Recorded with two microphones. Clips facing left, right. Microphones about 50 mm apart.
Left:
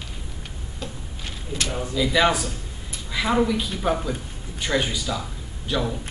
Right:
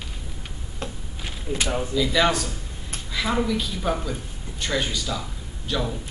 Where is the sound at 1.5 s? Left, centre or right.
Centre.